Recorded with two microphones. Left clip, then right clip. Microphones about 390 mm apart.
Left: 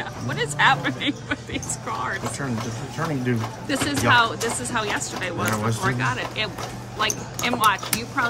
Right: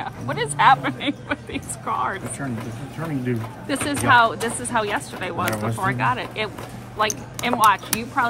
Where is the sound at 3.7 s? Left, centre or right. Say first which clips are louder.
Right 2 dB; centre.